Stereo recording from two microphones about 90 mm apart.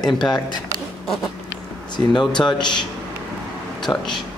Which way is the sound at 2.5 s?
55° left (ahead or behind).